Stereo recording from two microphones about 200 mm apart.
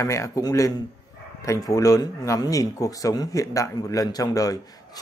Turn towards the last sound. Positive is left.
turn(degrees=15)  # may be behind; listen again after turning